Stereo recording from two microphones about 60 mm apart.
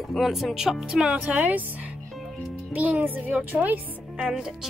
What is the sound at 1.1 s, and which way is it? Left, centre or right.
Speech, right.